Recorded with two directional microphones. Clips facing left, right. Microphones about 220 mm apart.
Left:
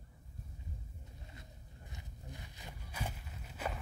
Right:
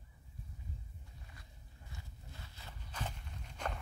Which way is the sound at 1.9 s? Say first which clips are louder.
Left 3 dB; 15° left (ahead or behind).